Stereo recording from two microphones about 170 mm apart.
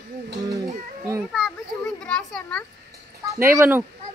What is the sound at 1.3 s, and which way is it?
Children playing, centre (ahead or behind).